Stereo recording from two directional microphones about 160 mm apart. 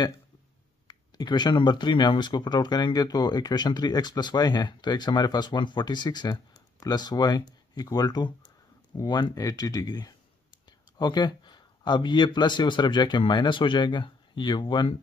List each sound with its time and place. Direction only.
0.8 s speech: 25° left (ahead or behind)